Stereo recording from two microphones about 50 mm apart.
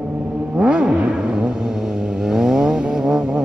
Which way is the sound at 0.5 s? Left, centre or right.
Centre.